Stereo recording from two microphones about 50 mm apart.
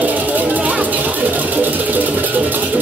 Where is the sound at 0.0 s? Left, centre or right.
Right.